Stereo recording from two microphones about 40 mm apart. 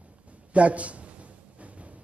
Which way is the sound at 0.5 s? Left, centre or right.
Right.